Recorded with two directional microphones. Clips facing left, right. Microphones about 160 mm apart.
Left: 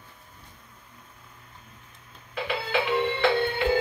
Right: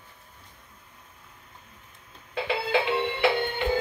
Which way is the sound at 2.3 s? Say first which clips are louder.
Right 2 dB; 25° right (ahead or behind).